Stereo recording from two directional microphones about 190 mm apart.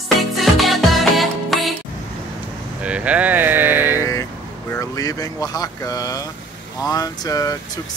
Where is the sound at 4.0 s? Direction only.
15° left (ahead or behind).